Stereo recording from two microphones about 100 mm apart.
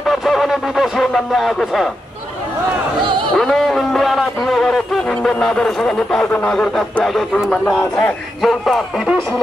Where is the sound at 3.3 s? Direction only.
Centre (ahead or behind).